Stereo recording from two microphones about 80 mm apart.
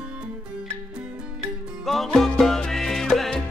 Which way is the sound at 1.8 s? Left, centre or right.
Centre.